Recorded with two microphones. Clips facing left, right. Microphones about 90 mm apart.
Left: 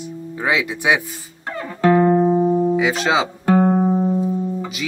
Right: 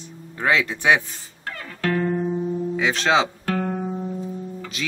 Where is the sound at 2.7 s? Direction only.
10° left (ahead or behind).